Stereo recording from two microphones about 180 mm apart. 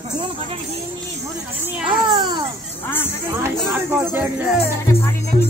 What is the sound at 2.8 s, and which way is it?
Speech, 10° left (ahead or behind).